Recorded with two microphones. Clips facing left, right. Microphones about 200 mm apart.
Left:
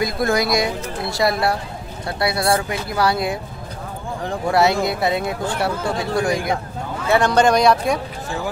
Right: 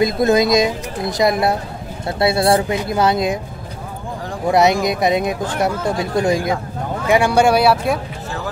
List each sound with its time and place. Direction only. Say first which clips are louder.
0.0 s speech: right 5 dB; 20° right (ahead or behind)
4.5 s speech: right 3 dB; 20° right (ahead or behind)
7.1 s speech: right 2 dB; 10° right (ahead or behind)